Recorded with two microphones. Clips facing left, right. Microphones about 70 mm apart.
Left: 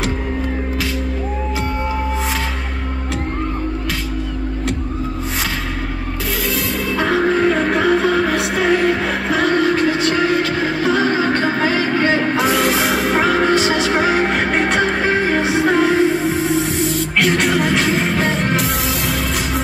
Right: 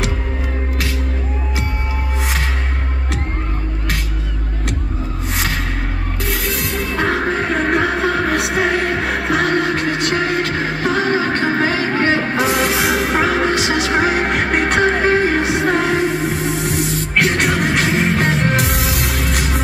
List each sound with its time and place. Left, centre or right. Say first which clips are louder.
6.4 s music: left 1 dB; right
12.7 s music: even; left
13.0 s music: left 1 dB; right
13.6 s music: left 1 dB; left
13.8 s music: even; right
17.2 s music: even; right